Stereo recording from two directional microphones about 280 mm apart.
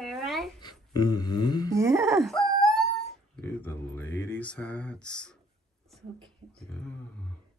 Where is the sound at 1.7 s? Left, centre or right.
Centre.